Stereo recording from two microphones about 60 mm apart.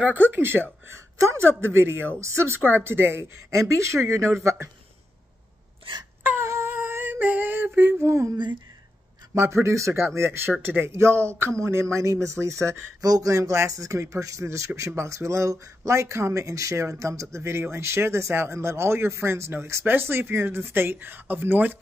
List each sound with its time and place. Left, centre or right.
0.0 s speech: right
0.8 s a woman's voice: right
2.6 s speech: right
6.4 s a sound: right
6.7 s a sound: right
8.0 s speech: right
9.3 s speech: right
10.5 s speech: right
11.0 s speech: right